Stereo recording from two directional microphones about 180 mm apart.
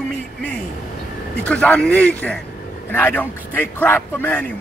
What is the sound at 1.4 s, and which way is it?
A man's voice, 5° left (ahead or behind).